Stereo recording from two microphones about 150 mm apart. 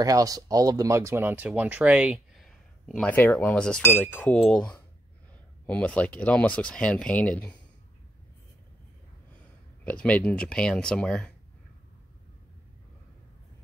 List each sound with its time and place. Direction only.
0.0 s speech: 25° right (ahead or behind)
3.0 s speech: 10° left (ahead or behind)
9.8 s speech: 10° left (ahead or behind)